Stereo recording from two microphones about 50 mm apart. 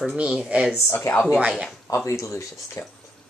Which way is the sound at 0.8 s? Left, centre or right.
Left.